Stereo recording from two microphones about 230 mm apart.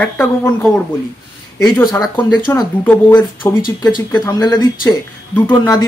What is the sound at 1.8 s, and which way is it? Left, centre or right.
Speech, centre.